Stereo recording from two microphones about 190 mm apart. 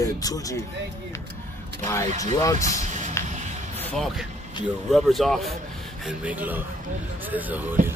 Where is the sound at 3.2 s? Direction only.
15° left (ahead or behind).